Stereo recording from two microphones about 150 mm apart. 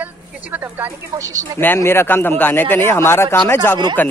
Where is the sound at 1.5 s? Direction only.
15° left (ahead or behind).